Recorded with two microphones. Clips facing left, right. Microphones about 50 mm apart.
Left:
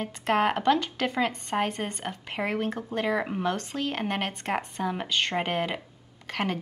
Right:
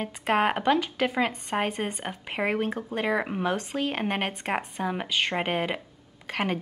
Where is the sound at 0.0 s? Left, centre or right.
Centre.